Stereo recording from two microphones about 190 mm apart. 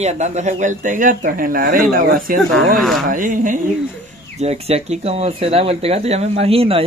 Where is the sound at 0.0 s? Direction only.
35° right (ahead or behind).